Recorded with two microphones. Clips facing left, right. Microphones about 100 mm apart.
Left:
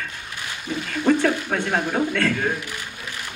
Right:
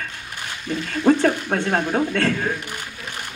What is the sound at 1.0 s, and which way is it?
Speech, 40° right (ahead or behind).